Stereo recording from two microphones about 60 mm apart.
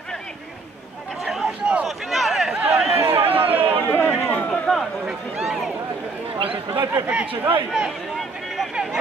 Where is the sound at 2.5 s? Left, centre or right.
Right.